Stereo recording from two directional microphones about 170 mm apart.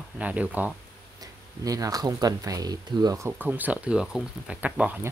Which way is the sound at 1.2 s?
20° right (ahead or behind).